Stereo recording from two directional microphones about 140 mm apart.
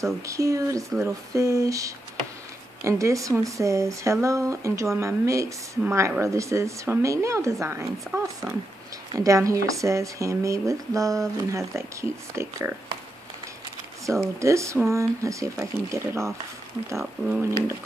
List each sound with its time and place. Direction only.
0.0 s speech: 20° right (ahead or behind)
14.4 s speech: 20° right (ahead or behind)
16.9 s speech: centre (ahead or behind)